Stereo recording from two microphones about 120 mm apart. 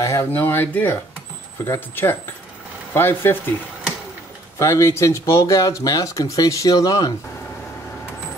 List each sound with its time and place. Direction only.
0.0 s speech: 20° left (ahead or behind)
4.6 s speech: 25° left (ahead or behind)